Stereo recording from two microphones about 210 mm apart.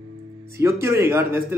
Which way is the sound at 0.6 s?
10° right (ahead or behind).